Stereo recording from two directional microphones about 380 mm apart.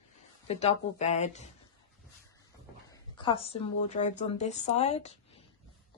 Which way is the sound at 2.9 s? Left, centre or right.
Centre.